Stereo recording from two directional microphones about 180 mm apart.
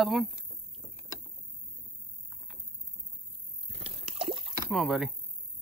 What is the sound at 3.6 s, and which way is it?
Liquid, 35° right (ahead or behind).